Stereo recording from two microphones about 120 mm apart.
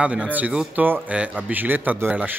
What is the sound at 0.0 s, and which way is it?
A man's voice, 10° right (ahead or behind).